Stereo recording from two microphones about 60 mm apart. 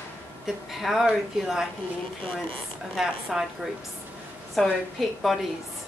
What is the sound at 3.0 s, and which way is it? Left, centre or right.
Speech, centre.